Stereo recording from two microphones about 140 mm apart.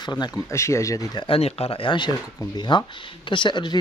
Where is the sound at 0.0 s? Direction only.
30° left (ahead or behind).